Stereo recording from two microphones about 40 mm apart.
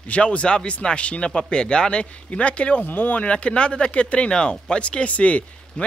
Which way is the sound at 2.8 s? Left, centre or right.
Left.